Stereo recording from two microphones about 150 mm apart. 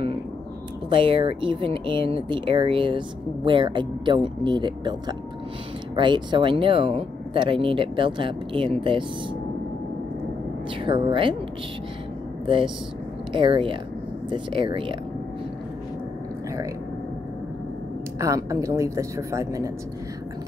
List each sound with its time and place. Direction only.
0.8 s speech: 35° right (ahead or behind)
10.8 s speech: 35° right (ahead or behind)
12.4 s speech: 35° right (ahead or behind)
18.2 s a woman's voice: 20° right (ahead or behind)